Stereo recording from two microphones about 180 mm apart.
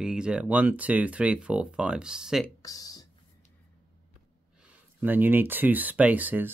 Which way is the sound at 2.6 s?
20° left (ahead or behind).